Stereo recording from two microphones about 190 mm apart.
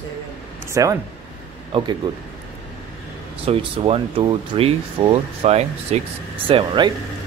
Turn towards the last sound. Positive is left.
turn(degrees=-25)  # may be behind; listen again after turning